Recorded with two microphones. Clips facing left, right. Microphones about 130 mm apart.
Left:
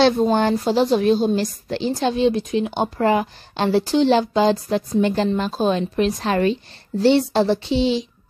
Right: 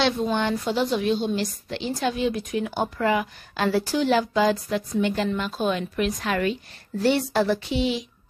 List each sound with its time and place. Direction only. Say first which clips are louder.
0.0 s a woman's voice: left 7 dB; 40° left (ahead or behind); by 2.9 s 25° left (ahead or behind)
3.0 s a woman's voice: left 5 dB; 35° left (ahead or behind)